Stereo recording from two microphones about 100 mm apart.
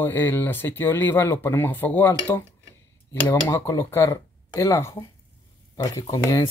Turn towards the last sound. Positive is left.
turn(degrees=35)  # may be behind; listen again after turning